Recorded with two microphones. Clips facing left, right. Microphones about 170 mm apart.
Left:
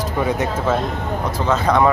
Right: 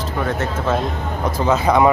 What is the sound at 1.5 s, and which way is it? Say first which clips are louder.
Speech: right 1 dB; 10° right (ahead or behind).